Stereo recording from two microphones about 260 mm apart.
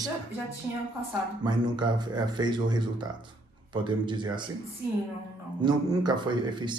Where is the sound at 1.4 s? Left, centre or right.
Centre.